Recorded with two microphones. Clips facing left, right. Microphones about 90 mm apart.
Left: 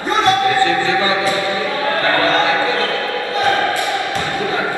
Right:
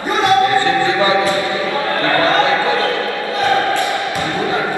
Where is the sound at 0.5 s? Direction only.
20° right (ahead or behind).